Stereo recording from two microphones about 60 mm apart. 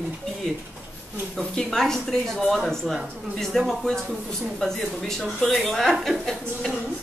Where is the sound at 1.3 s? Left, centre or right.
Centre.